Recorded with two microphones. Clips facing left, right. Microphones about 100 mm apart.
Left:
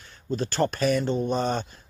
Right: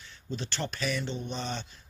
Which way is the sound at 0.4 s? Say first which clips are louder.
Left 11 dB; 45° left (ahead or behind).